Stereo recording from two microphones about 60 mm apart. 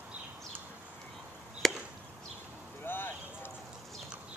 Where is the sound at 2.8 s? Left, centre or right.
Left.